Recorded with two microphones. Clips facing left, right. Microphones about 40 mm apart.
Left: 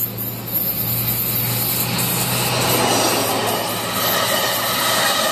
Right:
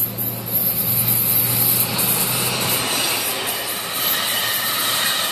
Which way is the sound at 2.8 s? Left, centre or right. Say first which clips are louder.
Left 5 dB; left.